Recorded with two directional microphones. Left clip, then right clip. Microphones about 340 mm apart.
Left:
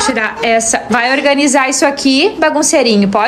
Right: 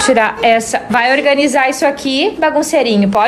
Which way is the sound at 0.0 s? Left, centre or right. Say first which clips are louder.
Right 3 dB; centre.